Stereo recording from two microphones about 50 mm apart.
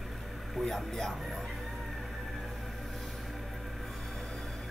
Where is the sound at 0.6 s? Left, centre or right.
Centre.